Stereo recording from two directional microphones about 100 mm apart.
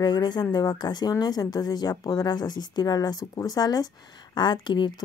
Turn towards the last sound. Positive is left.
turn(degrees=50)  # may be behind; listen again after turning